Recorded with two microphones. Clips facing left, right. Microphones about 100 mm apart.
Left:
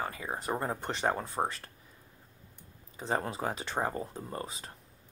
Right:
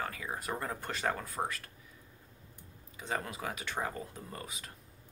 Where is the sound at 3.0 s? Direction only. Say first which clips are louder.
Left 5 dB; 30° left (ahead or behind).